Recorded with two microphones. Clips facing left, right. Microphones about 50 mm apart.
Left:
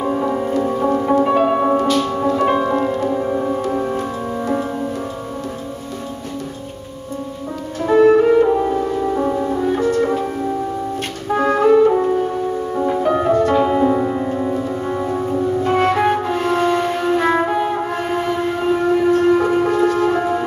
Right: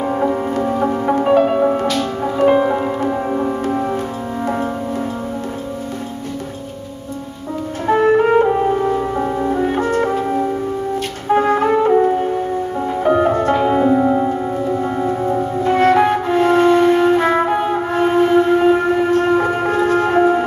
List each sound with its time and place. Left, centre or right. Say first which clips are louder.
0.1 s music: right 1 dB; centre
7.8 s music: left 2 dB; right
9.2 s music: even; centre
9.6 s music: left 1 dB; right
11.2 s music: even; right
12.7 s music: left 2 dB; centre
13.0 s music: right 3 dB; centre
14.3 s music: right 1 dB; centre
15.2 s music: left 1 dB; right